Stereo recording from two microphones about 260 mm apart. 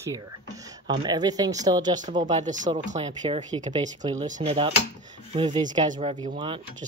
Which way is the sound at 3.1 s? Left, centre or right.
Centre.